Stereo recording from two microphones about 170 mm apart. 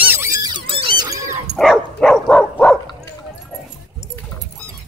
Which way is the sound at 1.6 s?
Centre (ahead or behind).